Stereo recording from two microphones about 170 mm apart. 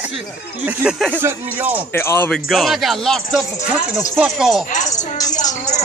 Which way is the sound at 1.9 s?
15° left (ahead or behind).